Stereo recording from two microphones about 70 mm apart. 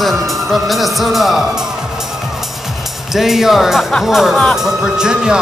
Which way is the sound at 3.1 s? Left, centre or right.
Centre.